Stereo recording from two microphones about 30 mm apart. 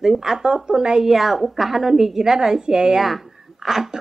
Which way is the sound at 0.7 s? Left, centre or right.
Right.